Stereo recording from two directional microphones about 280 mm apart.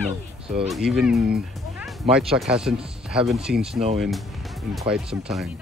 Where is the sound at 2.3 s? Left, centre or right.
Centre.